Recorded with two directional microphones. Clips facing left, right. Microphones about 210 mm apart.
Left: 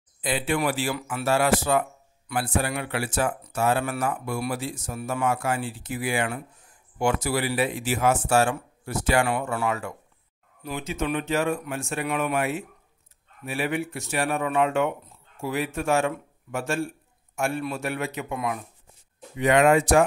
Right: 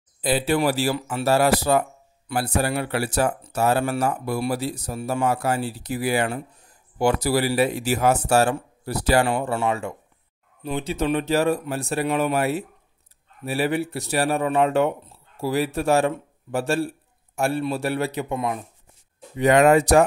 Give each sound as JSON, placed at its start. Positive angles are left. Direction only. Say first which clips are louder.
{"t": 0.2, "sound": "speech", "louder": "right 4 dB", "side_deg": -35}